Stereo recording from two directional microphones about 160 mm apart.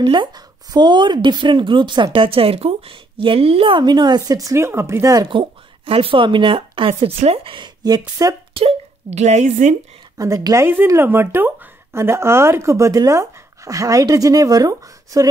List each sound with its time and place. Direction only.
0.0 s speech: 30° right (ahead or behind)
8.5 s speech: 40° right (ahead or behind)
10.1 s speech: 20° right (ahead or behind)